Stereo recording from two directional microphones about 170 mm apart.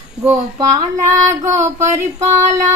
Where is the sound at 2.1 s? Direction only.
45° right (ahead or behind).